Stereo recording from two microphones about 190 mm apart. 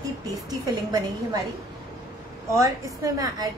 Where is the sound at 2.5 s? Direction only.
15° right (ahead or behind).